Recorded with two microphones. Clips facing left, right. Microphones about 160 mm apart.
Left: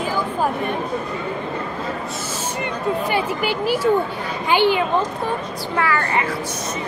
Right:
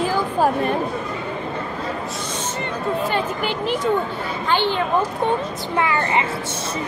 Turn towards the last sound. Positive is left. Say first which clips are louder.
# right 1 dB
turn(degrees=-20)  # may be behind; listen again after turning